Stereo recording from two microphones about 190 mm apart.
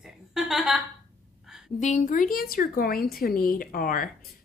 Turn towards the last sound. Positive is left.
turn(degrees=50)  # may be behind; listen again after turning